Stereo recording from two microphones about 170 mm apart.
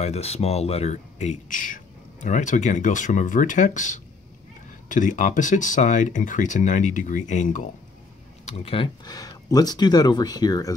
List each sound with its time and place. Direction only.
0.0 s speech: 40° left (ahead or behind)
8.5 s speech: 35° left (ahead or behind)